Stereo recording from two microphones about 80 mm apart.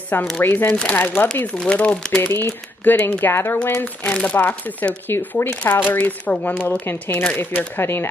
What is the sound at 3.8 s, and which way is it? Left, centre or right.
Speech, centre.